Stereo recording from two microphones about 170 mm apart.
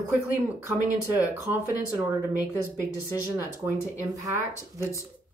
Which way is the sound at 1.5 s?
15° right (ahead or behind).